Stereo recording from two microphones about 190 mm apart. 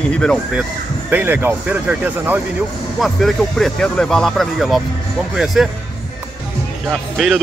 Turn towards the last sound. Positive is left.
turn(degrees=0)  # may be behind; listen again after turning